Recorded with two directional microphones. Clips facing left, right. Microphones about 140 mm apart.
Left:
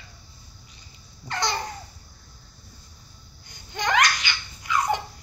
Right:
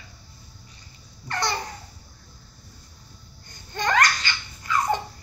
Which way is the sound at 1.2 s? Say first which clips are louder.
Even; 20° left (ahead or behind).